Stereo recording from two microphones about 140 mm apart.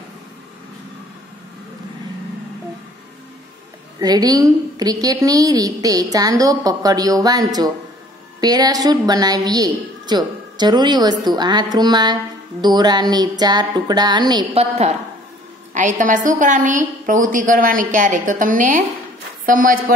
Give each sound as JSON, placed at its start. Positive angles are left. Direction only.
{"t": 4.0, "sound": "a woman's voice", "side_deg": -30}
{"t": 14.5, "sound": "a woman's voice", "side_deg": -50}
{"t": 15.7, "sound": "a woman's voice", "side_deg": -65}